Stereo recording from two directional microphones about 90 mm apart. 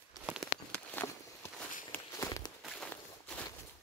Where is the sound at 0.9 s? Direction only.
25° left (ahead or behind).